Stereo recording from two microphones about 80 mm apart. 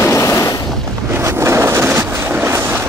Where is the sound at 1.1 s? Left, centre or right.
Right.